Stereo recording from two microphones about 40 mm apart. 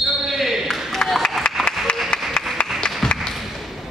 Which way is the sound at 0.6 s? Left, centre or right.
Centre.